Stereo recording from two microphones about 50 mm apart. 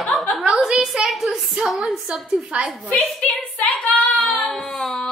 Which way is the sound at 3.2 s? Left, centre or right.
Left.